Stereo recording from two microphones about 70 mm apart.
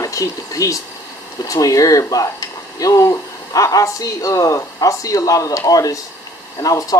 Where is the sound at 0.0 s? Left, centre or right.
Left.